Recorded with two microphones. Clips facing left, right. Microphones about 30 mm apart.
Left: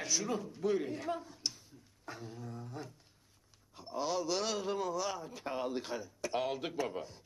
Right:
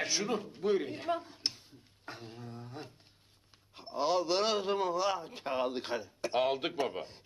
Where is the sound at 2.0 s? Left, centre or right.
Right.